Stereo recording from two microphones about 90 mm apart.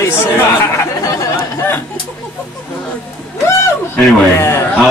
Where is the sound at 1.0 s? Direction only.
40° left (ahead or behind).